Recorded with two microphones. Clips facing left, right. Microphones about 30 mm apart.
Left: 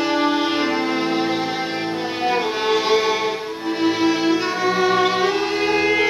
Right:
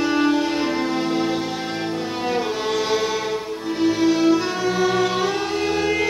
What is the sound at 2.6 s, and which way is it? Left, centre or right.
Music, left.